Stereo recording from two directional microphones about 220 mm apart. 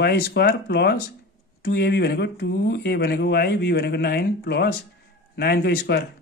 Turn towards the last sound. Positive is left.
turn(degrees=45)  # may be behind; listen again after turning